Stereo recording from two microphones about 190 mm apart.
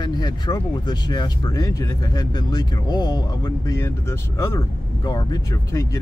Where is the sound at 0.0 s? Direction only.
20° left (ahead or behind).